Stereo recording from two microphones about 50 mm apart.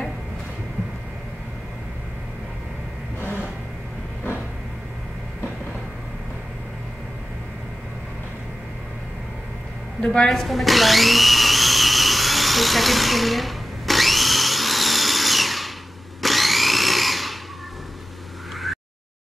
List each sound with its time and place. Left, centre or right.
3.2 s vehicle: left
9.9 s a woman's voice: centre
10.3 s drill: centre